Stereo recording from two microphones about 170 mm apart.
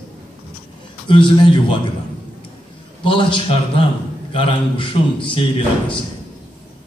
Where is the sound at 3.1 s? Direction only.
30° left (ahead or behind).